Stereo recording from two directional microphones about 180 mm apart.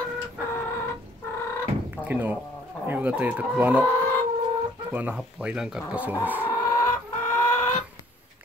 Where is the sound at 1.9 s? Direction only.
10° right (ahead or behind).